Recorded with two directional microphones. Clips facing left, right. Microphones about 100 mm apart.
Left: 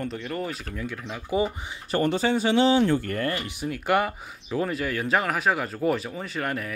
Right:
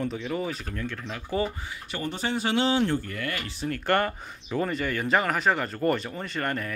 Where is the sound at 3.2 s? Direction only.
30° left (ahead or behind).